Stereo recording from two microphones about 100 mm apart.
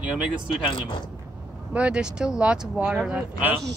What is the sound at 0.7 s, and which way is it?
Speech, 55° left (ahead or behind).